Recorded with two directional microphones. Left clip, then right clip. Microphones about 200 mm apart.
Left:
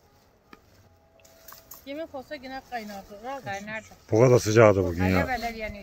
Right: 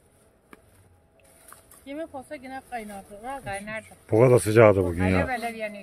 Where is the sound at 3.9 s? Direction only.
5° right (ahead or behind).